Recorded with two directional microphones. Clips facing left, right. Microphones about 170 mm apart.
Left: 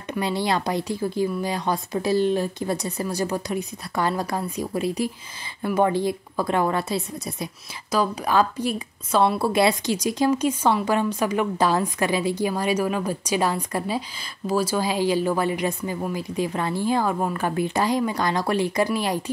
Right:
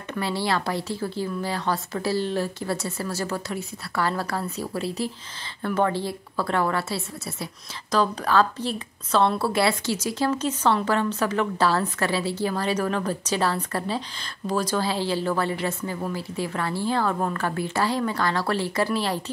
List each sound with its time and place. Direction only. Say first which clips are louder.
0.1 s a woman's voice: left 2 dB; 15° left (ahead or behind)